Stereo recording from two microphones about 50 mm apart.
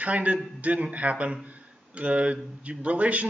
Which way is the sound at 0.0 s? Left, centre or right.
Right.